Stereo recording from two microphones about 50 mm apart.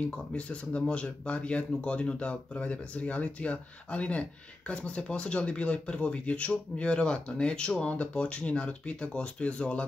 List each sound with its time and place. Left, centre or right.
0.0 s speech: left